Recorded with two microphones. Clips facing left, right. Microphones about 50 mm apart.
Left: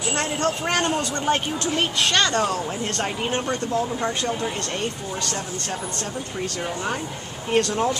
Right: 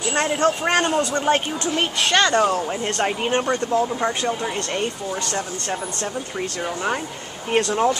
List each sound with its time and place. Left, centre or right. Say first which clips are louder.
0.1 s speech: right 5 dB; right
0.9 s speech: right 4 dB; centre
1.8 s speech: right 3 dB; right
4.0 s speech: right 2 dB; centre
7.5 s speech: right 2 dB; centre